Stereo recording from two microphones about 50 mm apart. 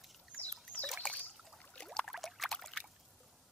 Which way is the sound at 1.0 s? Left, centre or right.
Left.